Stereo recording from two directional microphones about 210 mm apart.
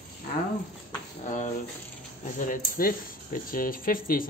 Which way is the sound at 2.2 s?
40° left (ahead or behind).